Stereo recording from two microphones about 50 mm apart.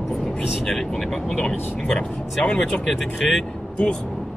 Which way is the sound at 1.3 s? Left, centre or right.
Centre.